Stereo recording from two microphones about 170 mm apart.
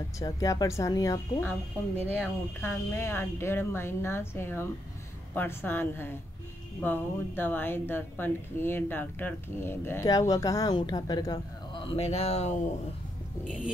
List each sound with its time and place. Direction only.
0.2 s a woman's voice: 20° left (ahead or behind); by 12.5 s 40° left (ahead or behind)